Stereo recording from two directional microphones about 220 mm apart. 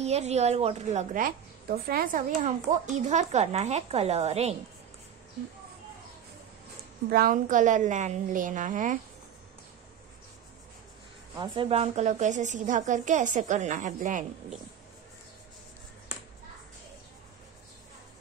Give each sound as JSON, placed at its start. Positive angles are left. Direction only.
{"t": 0.0, "sound": "a woman's voice", "side_deg": -30}
{"t": 7.1, "sound": "a woman's voice", "side_deg": -40}
{"t": 11.3, "sound": "a woman's voice", "side_deg": -20}